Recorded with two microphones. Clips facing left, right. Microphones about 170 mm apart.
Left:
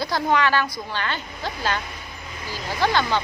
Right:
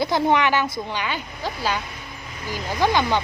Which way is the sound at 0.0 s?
20° right (ahead or behind).